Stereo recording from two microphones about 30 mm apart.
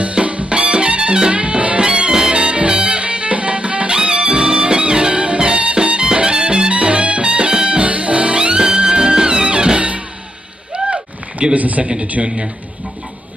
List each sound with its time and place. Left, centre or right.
0.1 s music: right
1.3 s music: right
1.8 s music: right
3.9 s music: right
7.8 s music: right
8.5 s music: right
9.8 s music: right
10.7 s a sound: right
11.5 s a man's voice: right
12.2 s a man's voice: centre